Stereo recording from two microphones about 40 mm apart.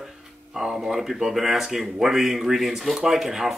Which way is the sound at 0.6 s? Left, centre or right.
Centre.